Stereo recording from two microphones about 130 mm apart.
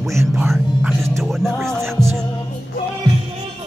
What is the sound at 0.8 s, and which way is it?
Speech, centre (ahead or behind).